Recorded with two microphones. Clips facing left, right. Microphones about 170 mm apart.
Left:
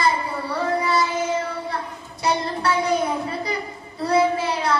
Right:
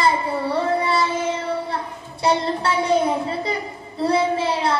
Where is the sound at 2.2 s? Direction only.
25° right (ahead or behind).